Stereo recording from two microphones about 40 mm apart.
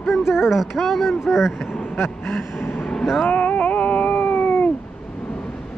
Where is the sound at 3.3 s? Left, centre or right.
Left.